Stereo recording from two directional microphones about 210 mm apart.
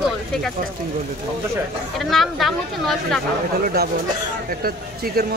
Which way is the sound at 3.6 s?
45° right (ahead or behind).